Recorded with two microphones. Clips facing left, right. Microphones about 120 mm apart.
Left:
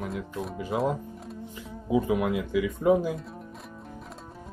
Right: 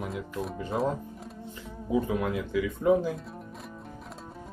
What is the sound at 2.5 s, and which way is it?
Speech, 20° left (ahead or behind).